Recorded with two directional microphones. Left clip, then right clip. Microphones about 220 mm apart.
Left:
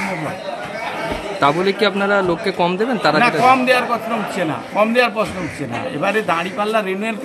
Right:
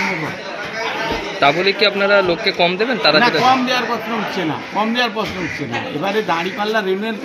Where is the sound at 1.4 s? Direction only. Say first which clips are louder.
Right 2 dB; 40° left (ahead or behind).